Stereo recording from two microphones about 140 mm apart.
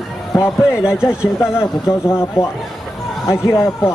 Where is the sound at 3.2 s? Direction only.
20° left (ahead or behind).